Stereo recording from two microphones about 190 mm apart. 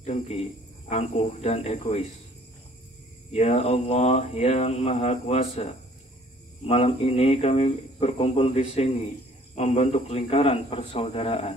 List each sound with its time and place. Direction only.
0.0 s speech: 35° left (ahead or behind)
3.3 s speech: 35° left (ahead or behind)